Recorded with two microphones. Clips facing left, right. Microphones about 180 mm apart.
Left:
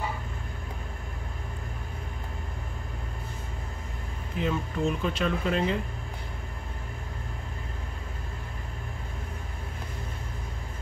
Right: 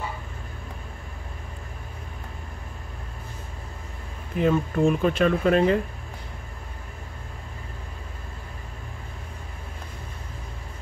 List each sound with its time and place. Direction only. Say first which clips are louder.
4.4 s speech: right 7 dB; 50° right (ahead or behind)